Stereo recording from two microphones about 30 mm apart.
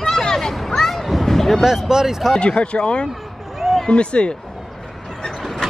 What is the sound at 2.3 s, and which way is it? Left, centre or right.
Speech, left.